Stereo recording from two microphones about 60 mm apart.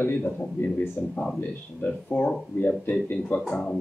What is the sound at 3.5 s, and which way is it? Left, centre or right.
Speech, centre.